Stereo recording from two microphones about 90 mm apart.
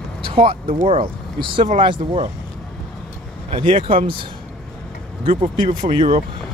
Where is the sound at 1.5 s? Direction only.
70° right (ahead or behind).